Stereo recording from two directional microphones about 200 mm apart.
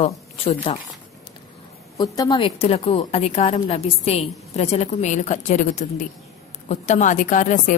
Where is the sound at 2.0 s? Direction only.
20° left (ahead or behind).